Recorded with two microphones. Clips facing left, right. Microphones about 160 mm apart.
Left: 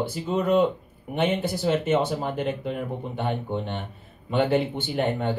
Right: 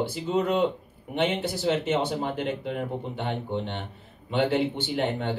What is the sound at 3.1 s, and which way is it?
Speech, 50° left (ahead or behind).